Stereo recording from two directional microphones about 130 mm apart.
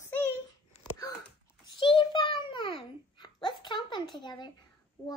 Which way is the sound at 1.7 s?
40° left (ahead or behind).